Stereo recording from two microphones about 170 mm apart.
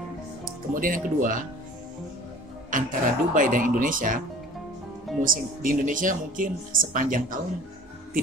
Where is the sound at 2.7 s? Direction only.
50° right (ahead or behind).